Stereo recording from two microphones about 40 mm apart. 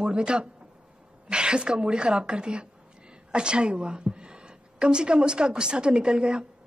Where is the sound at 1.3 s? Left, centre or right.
Right.